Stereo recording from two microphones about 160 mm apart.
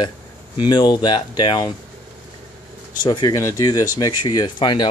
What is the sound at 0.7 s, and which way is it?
Speech, 30° left (ahead or behind).